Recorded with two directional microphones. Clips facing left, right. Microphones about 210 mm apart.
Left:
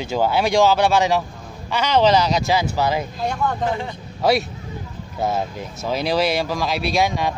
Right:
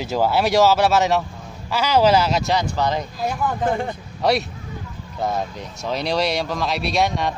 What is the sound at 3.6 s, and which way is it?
Speech, 50° right (ahead or behind).